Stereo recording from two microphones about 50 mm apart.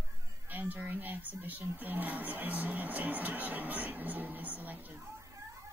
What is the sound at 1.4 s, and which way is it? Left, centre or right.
Music, right.